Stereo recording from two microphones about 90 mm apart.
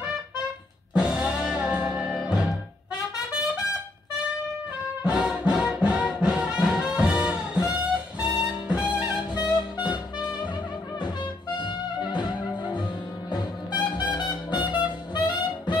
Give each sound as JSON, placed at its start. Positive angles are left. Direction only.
{"t": 0.9, "sound": "music", "side_deg": -10}
{"t": 5.0, "sound": "music", "side_deg": -10}
{"t": 9.4, "sound": "music", "side_deg": 55}
{"t": 11.5, "sound": "music", "side_deg": 60}